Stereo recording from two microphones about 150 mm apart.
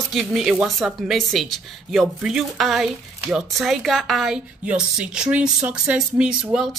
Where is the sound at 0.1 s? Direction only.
Centre (ahead or behind).